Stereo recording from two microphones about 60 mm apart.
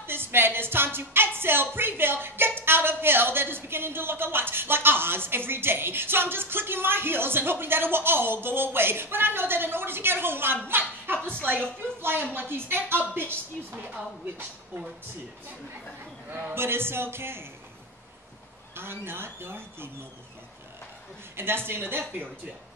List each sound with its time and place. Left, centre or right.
0.0 s a woman's voice: right
16.3 s speech: right
18.8 s speech: right
21.4 s speech: right